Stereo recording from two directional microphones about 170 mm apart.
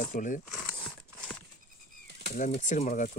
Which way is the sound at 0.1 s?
50° left (ahead or behind).